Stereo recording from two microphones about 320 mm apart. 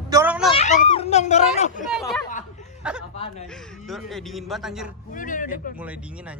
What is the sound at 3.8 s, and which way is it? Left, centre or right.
Speech, centre.